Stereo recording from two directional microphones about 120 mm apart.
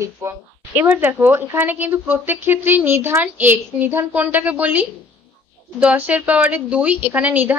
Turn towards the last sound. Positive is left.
turn(degrees=-15)  # may be behind; listen again after turning